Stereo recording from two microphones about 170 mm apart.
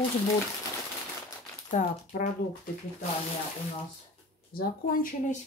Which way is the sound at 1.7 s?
60° left (ahead or behind).